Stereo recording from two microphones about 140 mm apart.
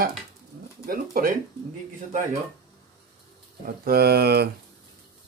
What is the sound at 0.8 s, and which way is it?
Speech, 80° right.